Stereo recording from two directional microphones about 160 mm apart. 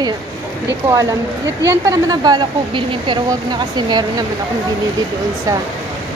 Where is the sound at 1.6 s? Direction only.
20° right (ahead or behind).